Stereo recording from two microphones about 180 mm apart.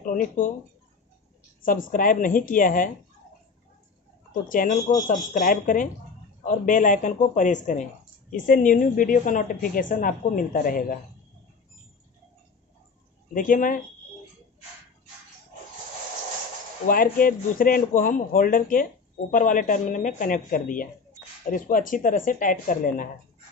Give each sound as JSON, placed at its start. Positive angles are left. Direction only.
{"t": 0.0, "sound": "speech", "side_deg": 50}
{"t": 1.6, "sound": "a woman's voice", "side_deg": 50}
{"t": 4.3, "sound": "a woman's voice", "side_deg": 50}
{"t": 13.3, "sound": "a woman's voice", "side_deg": 50}
{"t": 16.8, "sound": "a woman's voice", "side_deg": 50}